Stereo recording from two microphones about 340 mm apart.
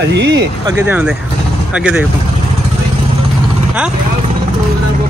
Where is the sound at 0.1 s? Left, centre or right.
Right.